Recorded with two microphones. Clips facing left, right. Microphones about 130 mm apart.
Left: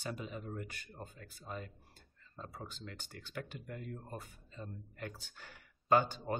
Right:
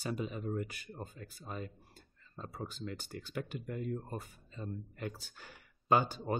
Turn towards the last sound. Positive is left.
turn(degrees=-10)  # may be behind; listen again after turning